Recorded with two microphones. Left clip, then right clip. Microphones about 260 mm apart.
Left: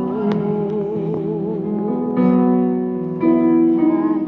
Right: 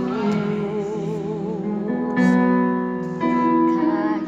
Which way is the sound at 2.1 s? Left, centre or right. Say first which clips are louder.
Left 2 dB; right.